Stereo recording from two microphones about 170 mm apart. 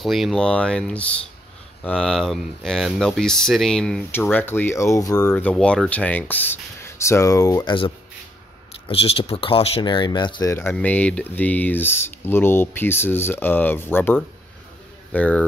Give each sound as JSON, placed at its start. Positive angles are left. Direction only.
{"t": 0.0, "sound": "speech", "side_deg": 0}
{"t": 5.3, "sound": "speech", "side_deg": 10}
{"t": 10.5, "sound": "speech", "side_deg": 10}